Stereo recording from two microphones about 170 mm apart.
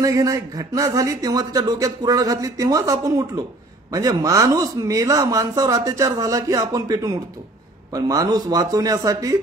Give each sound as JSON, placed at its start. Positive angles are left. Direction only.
{"t": 0.0, "sound": "speech", "side_deg": -20}